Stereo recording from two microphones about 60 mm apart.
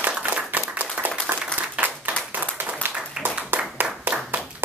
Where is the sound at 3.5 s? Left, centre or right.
Right.